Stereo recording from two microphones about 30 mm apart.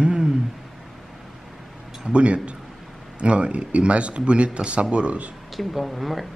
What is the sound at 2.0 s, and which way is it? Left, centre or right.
Speech, right.